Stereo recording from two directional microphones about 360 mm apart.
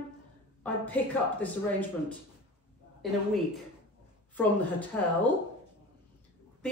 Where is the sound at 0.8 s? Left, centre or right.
Centre.